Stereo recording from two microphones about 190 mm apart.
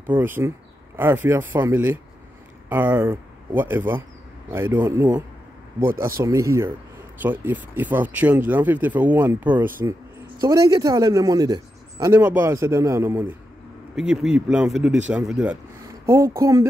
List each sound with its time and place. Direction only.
0.1 s a man's voice: 10° right (ahead or behind)
15.9 s speech: 15° right (ahead or behind)